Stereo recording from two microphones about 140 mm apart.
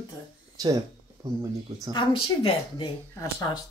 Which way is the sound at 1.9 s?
40° left (ahead or behind).